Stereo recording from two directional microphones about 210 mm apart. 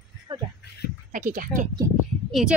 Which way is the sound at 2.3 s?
Centre (ahead or behind).